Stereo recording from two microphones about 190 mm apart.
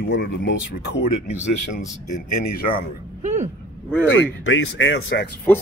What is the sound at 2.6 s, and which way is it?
Speech, 50° left (ahead or behind).